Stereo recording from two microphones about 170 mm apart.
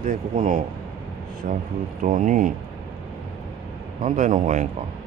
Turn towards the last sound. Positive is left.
turn(degrees=-45)  # may be behind; listen again after turning